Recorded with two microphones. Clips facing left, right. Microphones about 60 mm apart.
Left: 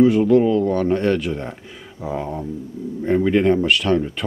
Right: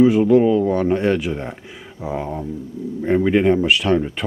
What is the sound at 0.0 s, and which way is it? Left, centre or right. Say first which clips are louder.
Speech: right 1 dB; centre.